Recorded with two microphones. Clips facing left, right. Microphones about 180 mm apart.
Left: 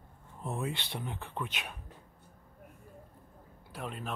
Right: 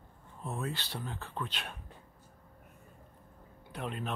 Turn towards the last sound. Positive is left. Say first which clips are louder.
# right 2 dB
turn(degrees=0)  # may be behind; listen again after turning